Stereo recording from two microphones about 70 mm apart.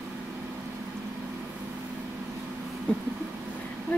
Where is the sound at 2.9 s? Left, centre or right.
Centre.